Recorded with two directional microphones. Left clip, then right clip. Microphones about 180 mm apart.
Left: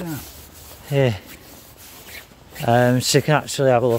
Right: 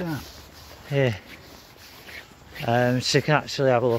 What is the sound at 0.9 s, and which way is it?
Speech, 20° left (ahead or behind).